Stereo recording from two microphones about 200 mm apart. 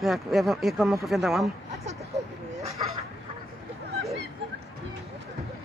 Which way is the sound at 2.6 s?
30° right (ahead or behind).